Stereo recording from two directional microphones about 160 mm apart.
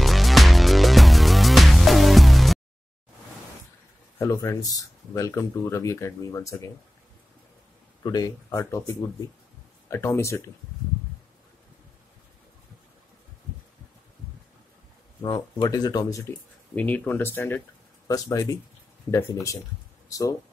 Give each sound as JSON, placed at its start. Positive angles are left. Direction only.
{"t": 0.0, "sound": "music", "side_deg": 0}
{"t": 4.2, "sound": "speech", "side_deg": 20}
{"t": 8.0, "sound": "speech", "side_deg": 25}
{"t": 15.2, "sound": "speech", "side_deg": 30}
{"t": 16.7, "sound": "speech", "side_deg": 10}
{"t": 20.1, "sound": "speech", "side_deg": 20}